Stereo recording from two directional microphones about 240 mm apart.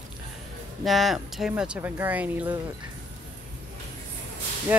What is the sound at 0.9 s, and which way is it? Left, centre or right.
Speech, centre.